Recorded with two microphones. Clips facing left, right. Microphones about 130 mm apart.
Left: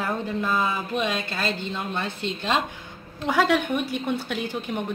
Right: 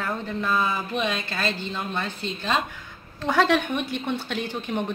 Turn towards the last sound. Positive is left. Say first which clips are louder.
# even
turn(degrees=5)  # may be behind; listen again after turning